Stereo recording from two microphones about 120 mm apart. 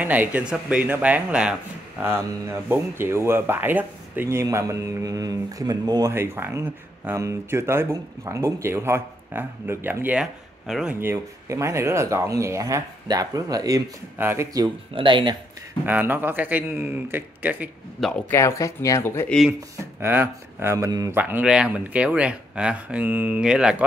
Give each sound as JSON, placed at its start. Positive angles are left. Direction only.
{"t": 0.0, "sound": "speech", "side_deg": -15}
{"t": 6.1, "sound": "speech", "side_deg": -20}
{"t": 10.7, "sound": "speech", "side_deg": -5}
{"t": 11.0, "sound": "speech", "side_deg": -20}
{"t": 14.1, "sound": "speech", "side_deg": -20}
{"t": 15.0, "sound": "speech", "side_deg": -45}
{"t": 15.8, "sound": "speech", "side_deg": -15}
{"t": 18.0, "sound": "speech", "side_deg": 0}
{"t": 18.3, "sound": "speech", "side_deg": 25}
{"t": 19.2, "sound": "speech", "side_deg": 5}
{"t": 19.8, "sound": "speech", "side_deg": -20}
{"t": 21.1, "sound": "speech", "side_deg": -15}